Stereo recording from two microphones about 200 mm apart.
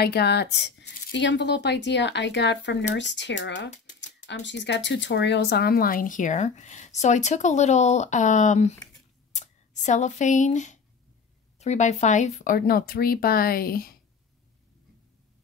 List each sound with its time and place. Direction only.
0.0 s speech: 55° left (ahead or behind)